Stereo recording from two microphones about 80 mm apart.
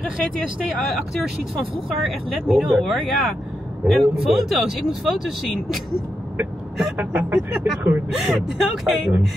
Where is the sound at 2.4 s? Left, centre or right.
Centre.